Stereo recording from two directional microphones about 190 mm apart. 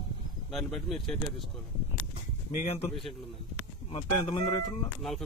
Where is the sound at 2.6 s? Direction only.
30° left (ahead or behind).